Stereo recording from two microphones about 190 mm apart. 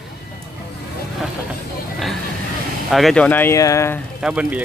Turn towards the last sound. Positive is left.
turn(degrees=-5)  # may be behind; listen again after turning